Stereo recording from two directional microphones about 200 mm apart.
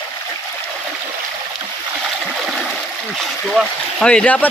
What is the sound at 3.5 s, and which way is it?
Speech, centre (ahead or behind).